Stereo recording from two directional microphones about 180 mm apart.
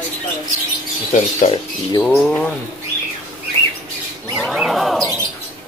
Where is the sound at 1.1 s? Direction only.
40° left (ahead or behind).